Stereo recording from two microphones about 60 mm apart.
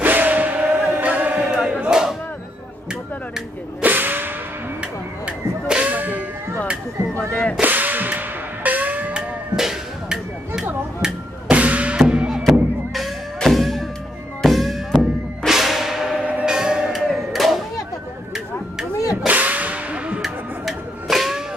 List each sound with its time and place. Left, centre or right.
0.0 s music: right
1.7 s a sound: centre
3.8 s whip: right
5.2 s music: centre
7.2 s music: left
7.6 s whip: right
9.1 s music: centre
11.5 s music: right
12.9 s music: centre
16.2 s music: right
16.4 s music: centre
17.0 s a sound: centre
19.2 s a sound: right
20.2 s music: centre